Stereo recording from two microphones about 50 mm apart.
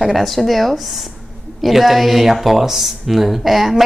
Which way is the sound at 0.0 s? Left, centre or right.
Centre.